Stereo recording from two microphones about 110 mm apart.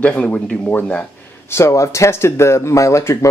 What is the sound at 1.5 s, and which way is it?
Speech, 25° left (ahead or behind).